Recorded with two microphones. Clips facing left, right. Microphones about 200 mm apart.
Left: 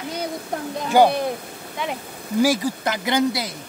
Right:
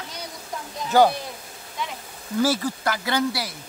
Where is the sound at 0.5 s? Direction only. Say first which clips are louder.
Left 5 dB; 60° left (ahead or behind).